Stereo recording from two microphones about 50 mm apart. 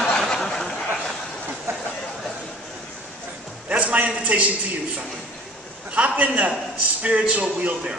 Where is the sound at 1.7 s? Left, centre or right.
Right.